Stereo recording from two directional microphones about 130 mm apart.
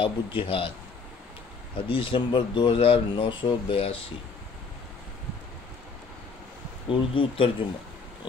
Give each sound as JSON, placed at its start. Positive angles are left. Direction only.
{"t": 0.0, "sound": "speech", "side_deg": 40}
{"t": 1.9, "sound": "speech", "side_deg": 40}
{"t": 6.9, "sound": "speech", "side_deg": 40}